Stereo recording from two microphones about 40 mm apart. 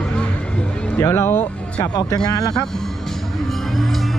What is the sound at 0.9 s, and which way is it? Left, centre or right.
Speech, left.